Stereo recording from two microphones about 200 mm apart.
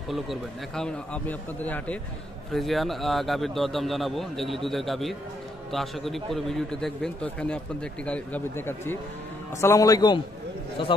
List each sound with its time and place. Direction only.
0.1 s a man's voice: centre (ahead or behind); by 10.2 s 20° left (ahead or behind)